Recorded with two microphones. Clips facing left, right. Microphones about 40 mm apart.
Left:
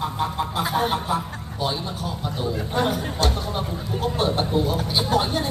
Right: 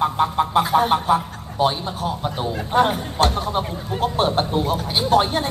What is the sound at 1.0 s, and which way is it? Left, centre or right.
Speech, right.